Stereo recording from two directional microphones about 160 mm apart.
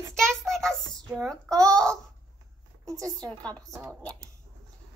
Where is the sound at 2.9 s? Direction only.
20° right (ahead or behind).